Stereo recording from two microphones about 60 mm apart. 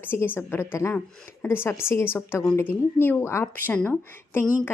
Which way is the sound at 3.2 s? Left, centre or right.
Left.